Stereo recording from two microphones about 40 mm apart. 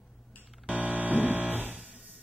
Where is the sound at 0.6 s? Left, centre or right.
Right.